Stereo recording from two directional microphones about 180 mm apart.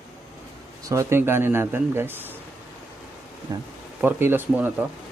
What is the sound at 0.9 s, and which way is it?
Speech, 15° right (ahead or behind).